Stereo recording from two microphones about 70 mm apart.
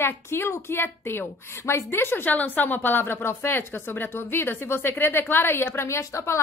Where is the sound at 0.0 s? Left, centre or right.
Left.